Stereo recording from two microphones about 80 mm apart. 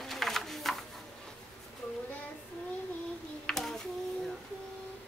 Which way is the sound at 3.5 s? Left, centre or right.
Centre.